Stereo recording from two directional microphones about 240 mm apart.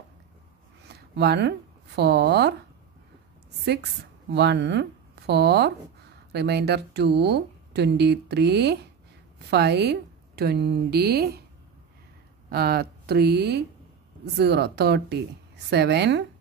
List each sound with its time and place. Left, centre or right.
0.8 s a sound: right
2.0 s speech: right
3.6 s a woman's voice: right
12.4 s speech: right